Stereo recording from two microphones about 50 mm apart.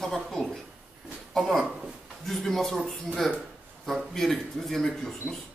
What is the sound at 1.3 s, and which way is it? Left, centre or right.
Speech, centre.